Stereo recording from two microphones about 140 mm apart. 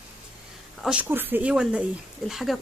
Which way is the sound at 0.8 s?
5° right (ahead or behind).